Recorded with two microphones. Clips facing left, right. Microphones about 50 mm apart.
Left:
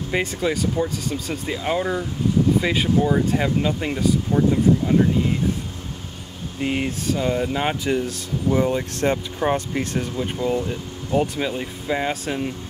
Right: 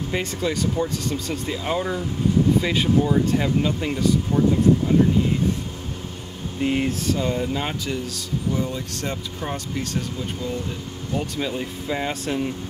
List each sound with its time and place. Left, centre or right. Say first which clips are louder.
0.1 s speech: left 3 dB; centre
6.6 s speech: right 1 dB; centre
8.5 s speech: left 7 dB; left
11.1 s speech: left 4 dB; centre